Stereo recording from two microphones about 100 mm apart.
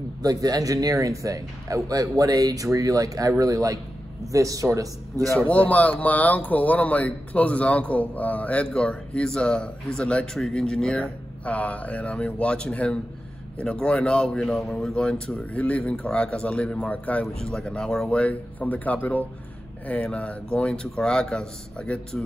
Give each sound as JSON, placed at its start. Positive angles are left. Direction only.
{"t": 0.2, "sound": "speech", "side_deg": -40}
{"t": 5.5, "sound": "speech", "side_deg": 15}